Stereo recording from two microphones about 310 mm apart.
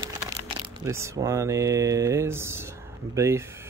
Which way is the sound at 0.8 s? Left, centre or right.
Centre.